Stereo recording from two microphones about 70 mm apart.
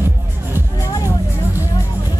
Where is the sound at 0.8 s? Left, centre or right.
Left.